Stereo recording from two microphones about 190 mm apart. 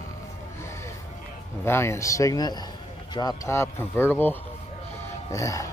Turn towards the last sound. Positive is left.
turn(degrees=15)  # may be behind; listen again after turning